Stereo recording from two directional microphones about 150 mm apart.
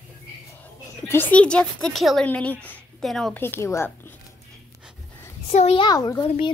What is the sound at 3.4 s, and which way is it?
Speech, 15° left (ahead or behind).